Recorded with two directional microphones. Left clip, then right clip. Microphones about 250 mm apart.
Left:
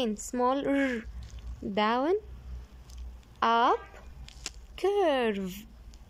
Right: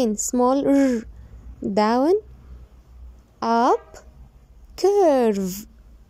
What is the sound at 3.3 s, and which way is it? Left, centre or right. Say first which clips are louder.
Speech: right 5 dB; centre.